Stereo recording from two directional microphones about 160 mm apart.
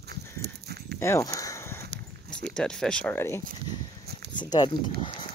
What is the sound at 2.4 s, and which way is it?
Speech, 5° left (ahead or behind).